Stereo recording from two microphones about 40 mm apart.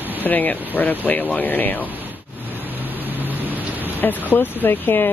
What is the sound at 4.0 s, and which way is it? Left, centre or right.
Speech, left.